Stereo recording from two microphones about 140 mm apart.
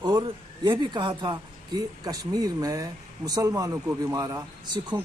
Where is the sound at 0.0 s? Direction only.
35° right (ahead or behind).